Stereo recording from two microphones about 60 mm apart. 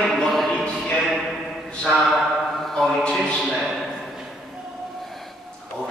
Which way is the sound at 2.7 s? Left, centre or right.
Centre.